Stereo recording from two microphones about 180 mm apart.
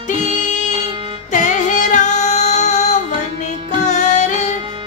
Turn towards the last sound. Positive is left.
turn(degrees=40)  # may be behind; listen again after turning